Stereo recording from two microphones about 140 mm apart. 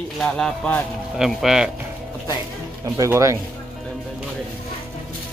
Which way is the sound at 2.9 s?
20° right (ahead or behind).